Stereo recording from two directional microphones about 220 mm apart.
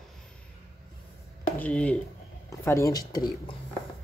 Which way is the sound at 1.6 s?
5° left (ahead or behind).